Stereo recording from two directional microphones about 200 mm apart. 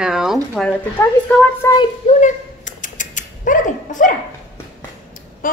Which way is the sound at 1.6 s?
15° left (ahead or behind).